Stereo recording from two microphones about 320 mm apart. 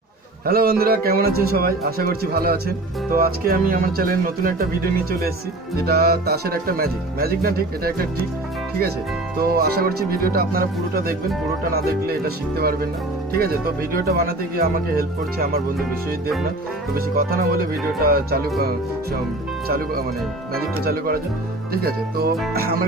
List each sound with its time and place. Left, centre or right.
0.5 s speech: right
9.4 s speech: right
16.9 s speech: right
20.8 s speech: right